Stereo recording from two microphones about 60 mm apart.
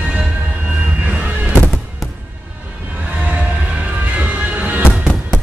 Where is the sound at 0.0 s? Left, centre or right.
Centre.